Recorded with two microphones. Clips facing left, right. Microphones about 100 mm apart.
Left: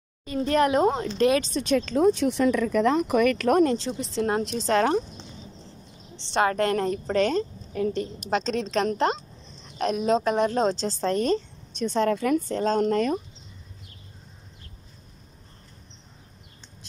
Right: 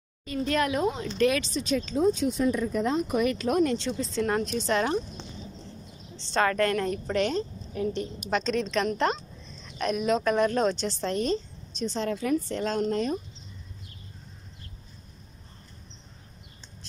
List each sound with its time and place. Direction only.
0.2 s a woman's voice: 25° left (ahead or behind)
0.7 s speech: 50° left (ahead or behind)
1.1 s a woman's voice: 30° left (ahead or behind)
1.5 s speech: 60° left (ahead or behind)
3.6 s speech: 30° left (ahead or behind)
4.6 s speech: 45° left (ahead or behind)
6.3 s a woman's voice: 25° left (ahead or behind); by 8.0 s 45° left (ahead or behind)
8.0 s a woman's voice: 30° left (ahead or behind); by 12.5 s 55° left (ahead or behind)
12.5 s a woman's voice: 40° left (ahead or behind)
12.8 s speech: 55° left (ahead or behind)